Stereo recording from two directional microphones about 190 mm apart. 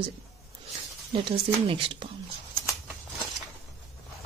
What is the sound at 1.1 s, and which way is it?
Speech, 25° right (ahead or behind).